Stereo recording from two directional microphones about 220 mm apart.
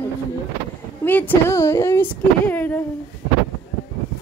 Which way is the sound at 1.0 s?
10° left (ahead or behind).